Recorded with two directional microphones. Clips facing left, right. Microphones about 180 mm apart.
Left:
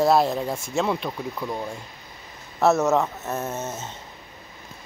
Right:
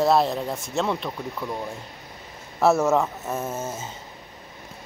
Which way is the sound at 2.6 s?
10° right (ahead or behind).